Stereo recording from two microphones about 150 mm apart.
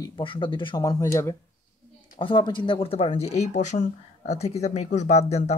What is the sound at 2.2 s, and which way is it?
Speech, 35° left (ahead or behind).